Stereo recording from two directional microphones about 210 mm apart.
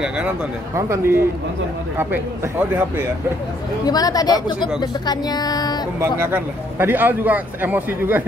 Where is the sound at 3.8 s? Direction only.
20° left (ahead or behind).